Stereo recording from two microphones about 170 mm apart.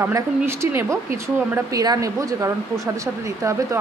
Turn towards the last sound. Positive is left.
turn(degrees=-15)  # may be behind; listen again after turning